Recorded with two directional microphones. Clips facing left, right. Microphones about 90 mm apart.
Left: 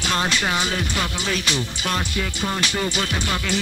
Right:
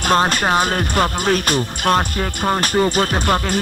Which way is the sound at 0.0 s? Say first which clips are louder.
Right 7 dB; 45° right (ahead or behind).